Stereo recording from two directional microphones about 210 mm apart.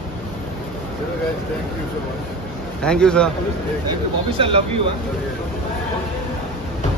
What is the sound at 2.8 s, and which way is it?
Speech, 5° left (ahead or behind).